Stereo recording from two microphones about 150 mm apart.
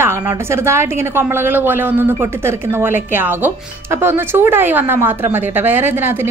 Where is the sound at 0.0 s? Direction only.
15° right (ahead or behind).